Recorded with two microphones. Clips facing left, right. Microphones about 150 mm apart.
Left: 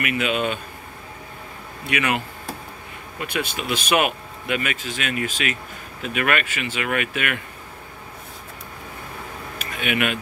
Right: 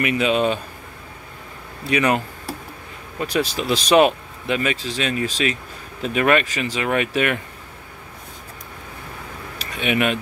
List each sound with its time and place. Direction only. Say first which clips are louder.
0.2 s speech: right 5 dB; 35° right (ahead or behind)
1.9 s speech: right 5 dB; 35° right (ahead or behind)
9.6 s a sound: right 3 dB; 35° right (ahead or behind)